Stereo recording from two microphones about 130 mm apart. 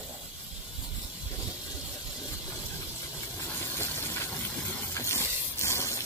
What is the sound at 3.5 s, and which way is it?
Steam, 15° left (ahead or behind).